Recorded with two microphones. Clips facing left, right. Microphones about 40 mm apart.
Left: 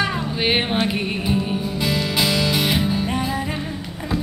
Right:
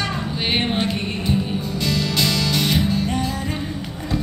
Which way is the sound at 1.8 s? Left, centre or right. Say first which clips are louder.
Even; centre.